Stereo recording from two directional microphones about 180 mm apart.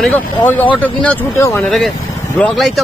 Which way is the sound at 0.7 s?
10° left (ahead or behind).